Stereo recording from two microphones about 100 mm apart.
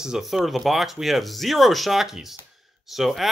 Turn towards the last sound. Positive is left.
turn(degrees=0)  # may be behind; listen again after turning